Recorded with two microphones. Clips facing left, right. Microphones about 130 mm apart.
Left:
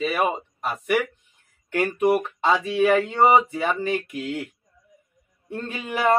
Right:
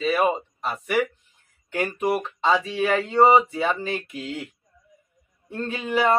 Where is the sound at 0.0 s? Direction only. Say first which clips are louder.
Right 2 dB; 15° left (ahead or behind).